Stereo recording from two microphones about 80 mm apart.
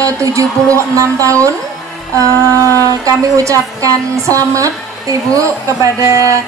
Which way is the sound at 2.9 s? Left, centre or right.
Right.